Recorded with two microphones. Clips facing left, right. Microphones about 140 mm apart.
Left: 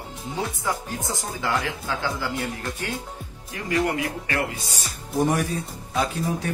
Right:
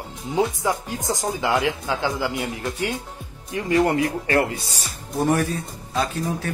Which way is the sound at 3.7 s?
30° right (ahead or behind).